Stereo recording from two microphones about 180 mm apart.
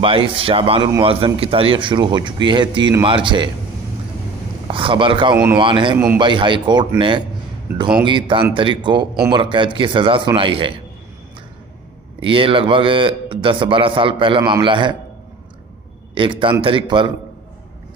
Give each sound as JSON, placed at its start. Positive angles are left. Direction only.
{"t": 0.0, "sound": "a man's voice", "side_deg": -30}
{"t": 4.6, "sound": "a man's voice", "side_deg": -30}
{"t": 5.3, "sound": "speech", "side_deg": -10}
{"t": 5.6, "sound": "a man's voice", "side_deg": -25}
{"t": 12.2, "sound": "a man's voice", "side_deg": -30}
{"t": 16.2, "sound": "a man's voice", "side_deg": -30}